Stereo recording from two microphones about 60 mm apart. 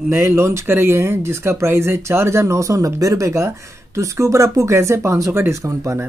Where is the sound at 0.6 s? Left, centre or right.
Right.